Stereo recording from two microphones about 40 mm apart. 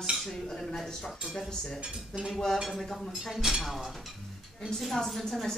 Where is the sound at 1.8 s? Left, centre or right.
Right.